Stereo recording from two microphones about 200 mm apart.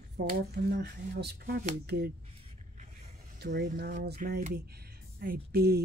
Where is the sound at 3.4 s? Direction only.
50° right (ahead or behind).